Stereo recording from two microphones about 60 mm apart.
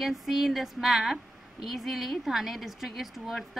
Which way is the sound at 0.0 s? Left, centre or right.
Centre.